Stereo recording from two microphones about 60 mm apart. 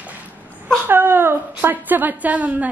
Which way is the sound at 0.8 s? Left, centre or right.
Right.